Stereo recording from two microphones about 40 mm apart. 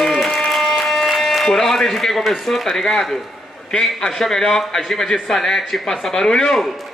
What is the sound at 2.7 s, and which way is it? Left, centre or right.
Speech, centre.